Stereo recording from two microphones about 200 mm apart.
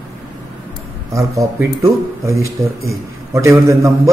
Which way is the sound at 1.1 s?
15° right (ahead or behind).